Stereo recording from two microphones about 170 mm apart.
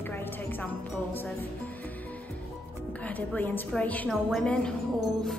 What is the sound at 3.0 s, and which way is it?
A woman's voice, 10° left (ahead or behind).